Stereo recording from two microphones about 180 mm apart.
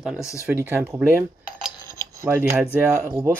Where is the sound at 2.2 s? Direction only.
15° right (ahead or behind).